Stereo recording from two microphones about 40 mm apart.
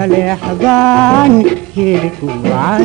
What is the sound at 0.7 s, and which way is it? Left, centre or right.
Music, centre.